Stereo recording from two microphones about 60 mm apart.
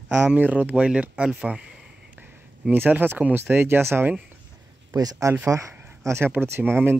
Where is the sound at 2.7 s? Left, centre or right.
Right.